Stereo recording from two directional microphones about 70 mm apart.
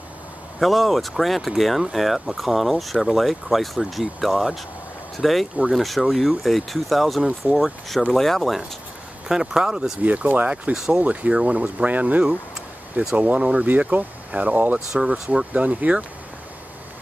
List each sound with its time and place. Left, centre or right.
0.6 s speech: centre
10.0 s speech: right
10.7 s speech: centre
11.0 s speech: centre